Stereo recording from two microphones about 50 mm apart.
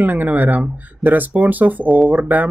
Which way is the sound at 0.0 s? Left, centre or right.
Right.